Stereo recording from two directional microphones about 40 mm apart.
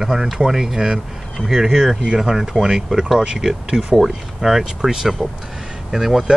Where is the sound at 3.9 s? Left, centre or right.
Centre.